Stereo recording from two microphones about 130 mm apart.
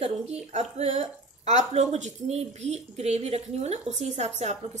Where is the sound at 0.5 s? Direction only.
55° right (ahead or behind).